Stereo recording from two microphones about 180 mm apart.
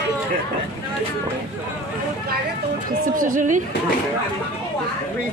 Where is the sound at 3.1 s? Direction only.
50° right (ahead or behind).